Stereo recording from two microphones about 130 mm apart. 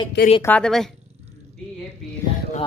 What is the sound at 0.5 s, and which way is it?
Speech, 5° left (ahead or behind).